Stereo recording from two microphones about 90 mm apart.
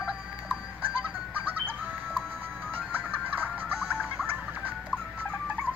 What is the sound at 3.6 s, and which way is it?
Music, 15° right (ahead or behind).